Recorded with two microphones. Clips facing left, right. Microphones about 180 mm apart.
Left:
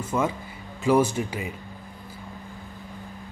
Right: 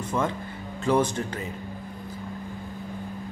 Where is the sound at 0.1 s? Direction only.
5° left (ahead or behind).